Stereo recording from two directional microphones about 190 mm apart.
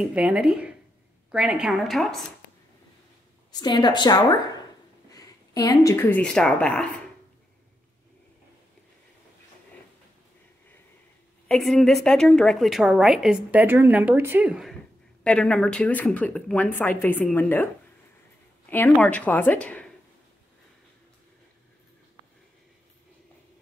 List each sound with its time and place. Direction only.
0.0 s a woman's voice: 5° right (ahead or behind)
3.5 s a woman's voice: 20° left (ahead or behind); by 6.9 s 5° left (ahead or behind)
11.4 s a woman's voice: 5° left (ahead or behind)
18.7 s speech: 10° left (ahead or behind)